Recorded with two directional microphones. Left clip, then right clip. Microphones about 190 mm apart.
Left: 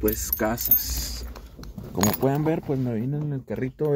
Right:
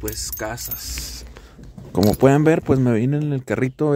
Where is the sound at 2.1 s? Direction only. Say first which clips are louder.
Right 11 dB; 45° right (ahead or behind).